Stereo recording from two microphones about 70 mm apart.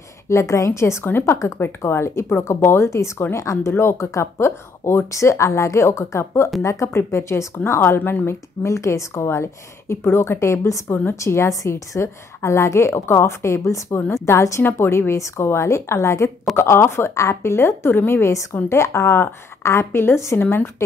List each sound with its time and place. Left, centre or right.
0.3 s a woman's voice: left
8.6 s a woman's voice: left
14.6 s speech: left